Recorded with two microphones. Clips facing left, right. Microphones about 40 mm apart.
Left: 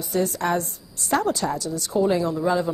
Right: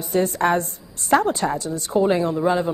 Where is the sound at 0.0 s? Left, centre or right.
Right.